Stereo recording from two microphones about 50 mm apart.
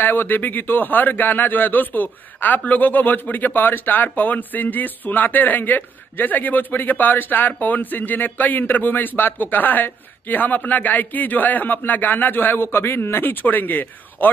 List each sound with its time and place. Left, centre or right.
0.0 s a man's voice: left